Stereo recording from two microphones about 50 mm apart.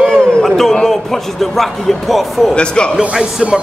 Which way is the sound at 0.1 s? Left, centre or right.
Centre.